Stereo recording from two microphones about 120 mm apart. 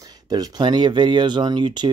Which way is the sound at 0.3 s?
35° right (ahead or behind).